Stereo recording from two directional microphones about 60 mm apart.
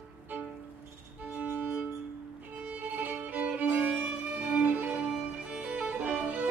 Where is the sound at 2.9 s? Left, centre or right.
Right.